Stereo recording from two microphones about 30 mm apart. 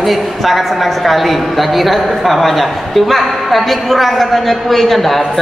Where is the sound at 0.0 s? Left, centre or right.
Centre.